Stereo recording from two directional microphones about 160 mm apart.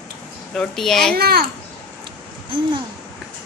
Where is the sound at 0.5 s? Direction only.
5° left (ahead or behind).